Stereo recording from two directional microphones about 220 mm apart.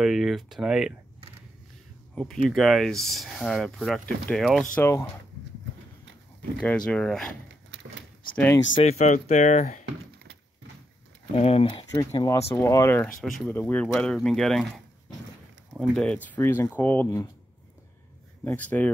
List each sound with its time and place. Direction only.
0.0 s speech: centre (ahead or behind)
2.1 s speech: centre (ahead or behind)
4.7 s speech: 10° left (ahead or behind)
6.6 s speech: 5° left (ahead or behind)
8.7 s speech: 30° left (ahead or behind)
11.3 s speech: 25° left (ahead or behind); by 14.7 s centre (ahead or behind)
15.8 s speech: 5° left (ahead or behind)
18.4 s speech: 10° left (ahead or behind)